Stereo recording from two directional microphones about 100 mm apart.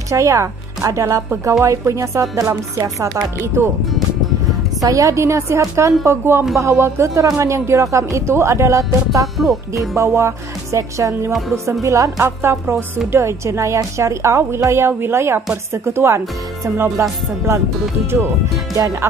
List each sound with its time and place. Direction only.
0.1 s a woman's voice: 30° right (ahead or behind)
4.8 s a woman's voice: 30° right (ahead or behind)
9.4 s speech: centre (ahead or behind)
9.9 s speech: 30° right (ahead or behind)